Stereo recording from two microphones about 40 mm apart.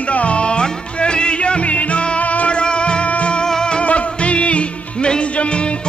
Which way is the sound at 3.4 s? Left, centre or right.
Centre.